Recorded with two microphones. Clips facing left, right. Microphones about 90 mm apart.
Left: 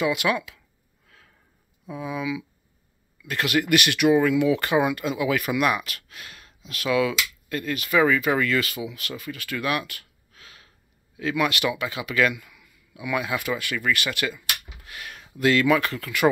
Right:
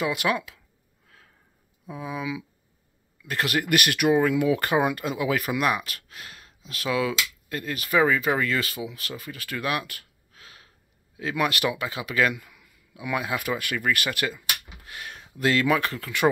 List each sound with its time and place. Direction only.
0.0 s speech: 35° right (ahead or behind)
1.0 s a sound: 30° right (ahead or behind)
1.9 s speech: 35° right (ahead or behind)
13.4 s speech: 50° right (ahead or behind); by 16.3 s 35° right (ahead or behind)